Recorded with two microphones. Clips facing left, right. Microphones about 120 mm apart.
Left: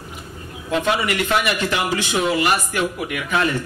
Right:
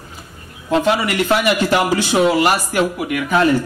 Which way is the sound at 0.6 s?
35° right (ahead or behind).